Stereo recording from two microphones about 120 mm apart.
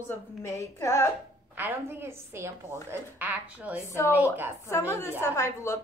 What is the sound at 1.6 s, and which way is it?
A woman's voice, 15° right (ahead or behind).